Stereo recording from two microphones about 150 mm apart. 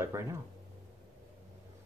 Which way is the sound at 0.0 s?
20° right (ahead or behind).